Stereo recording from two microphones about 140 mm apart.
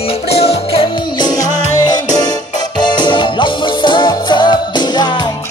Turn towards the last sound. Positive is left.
turn(degrees=30)  # may be behind; listen again after turning